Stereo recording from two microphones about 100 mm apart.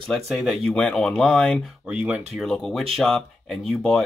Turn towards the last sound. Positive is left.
turn(degrees=5)  # may be behind; listen again after turning